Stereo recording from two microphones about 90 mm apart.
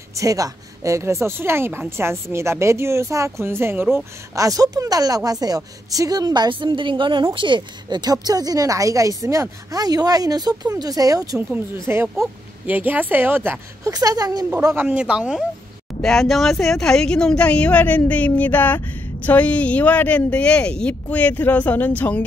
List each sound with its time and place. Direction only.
0.1 s speech: 40° right (ahead or behind)
4.4 s a woman's voice: 40° right (ahead or behind)
6.5 s a woman's voice: 65° right (ahead or behind); by 11.3 s 40° right (ahead or behind)
11.9 s speech: 20° right (ahead or behind)
13.8 s a woman's voice: 45° right (ahead or behind)
14.8 s speech: 15° right (ahead or behind)
16.0 s speech: 5° left (ahead or behind)